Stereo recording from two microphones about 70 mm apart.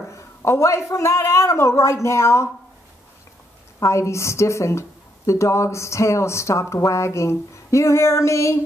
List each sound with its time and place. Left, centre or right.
0.1 s speech: left
3.8 s speech: left